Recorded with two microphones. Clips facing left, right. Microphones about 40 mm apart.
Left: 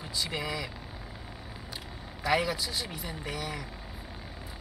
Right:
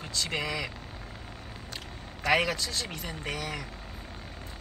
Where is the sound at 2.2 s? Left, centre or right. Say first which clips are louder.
Right 2 dB; right.